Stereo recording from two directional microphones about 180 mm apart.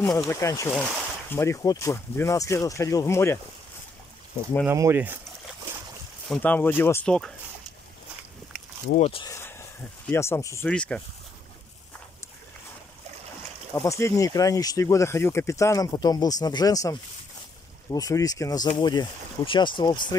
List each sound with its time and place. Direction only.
0.0 s speech: 15° left (ahead or behind)
4.6 s speech: 15° right (ahead or behind)
6.2 s speech: 5° left (ahead or behind)
9.0 s speech: 30° left (ahead or behind)
9.3 s speech: 15° left (ahead or behind)
13.7 s speech: 15° left (ahead or behind)